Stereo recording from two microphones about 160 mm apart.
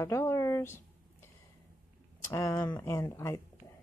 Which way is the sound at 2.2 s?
20° left (ahead or behind).